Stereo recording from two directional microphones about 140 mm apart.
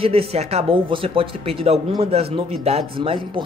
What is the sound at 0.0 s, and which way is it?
Speech, 45° right (ahead or behind).